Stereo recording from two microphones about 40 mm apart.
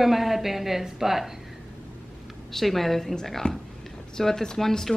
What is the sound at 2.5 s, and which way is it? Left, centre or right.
A woman's voice, centre.